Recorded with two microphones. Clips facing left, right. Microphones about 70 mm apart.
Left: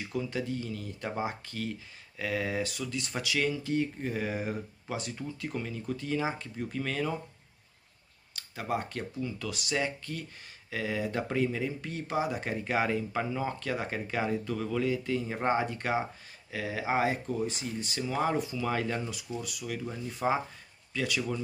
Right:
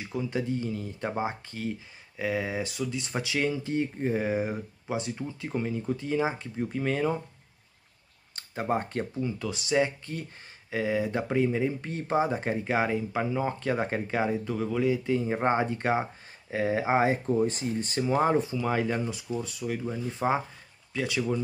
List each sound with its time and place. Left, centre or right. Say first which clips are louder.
0.0 s speech: right 2 dB; centre
8.4 s speech: right 4 dB; right
18.7 s speech: right 5 dB; centre